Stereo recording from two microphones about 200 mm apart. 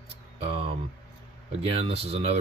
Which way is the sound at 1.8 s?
30° right (ahead or behind).